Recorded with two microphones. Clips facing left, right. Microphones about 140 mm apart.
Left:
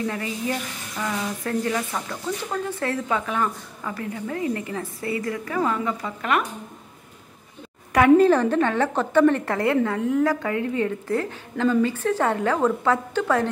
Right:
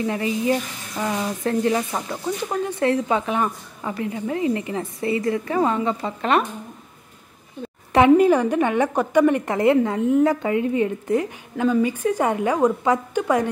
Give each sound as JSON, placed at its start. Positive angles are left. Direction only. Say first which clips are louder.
{"t": 0.0, "sound": "speech", "louder": "right 5 dB", "side_deg": -20}
{"t": 8.2, "sound": "a woman's voice", "louder": "right 1 dB", "side_deg": -10}